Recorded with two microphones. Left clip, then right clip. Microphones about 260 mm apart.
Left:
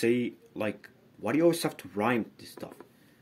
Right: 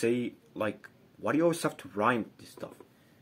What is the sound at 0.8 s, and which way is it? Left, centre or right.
Speech, centre.